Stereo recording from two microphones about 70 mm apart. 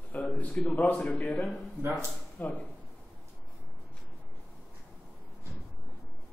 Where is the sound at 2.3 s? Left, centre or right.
Left.